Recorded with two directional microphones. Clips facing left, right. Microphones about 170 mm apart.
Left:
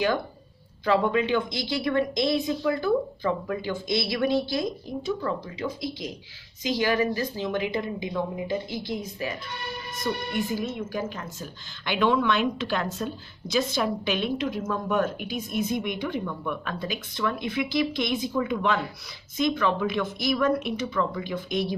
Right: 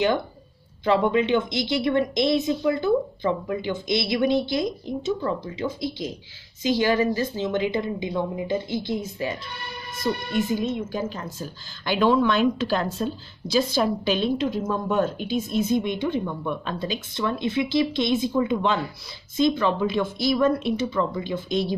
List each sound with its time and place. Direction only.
0.8 s a woman's voice: 25° right (ahead or behind)